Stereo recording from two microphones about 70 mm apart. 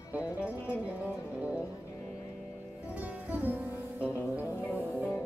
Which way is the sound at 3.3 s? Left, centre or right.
Right.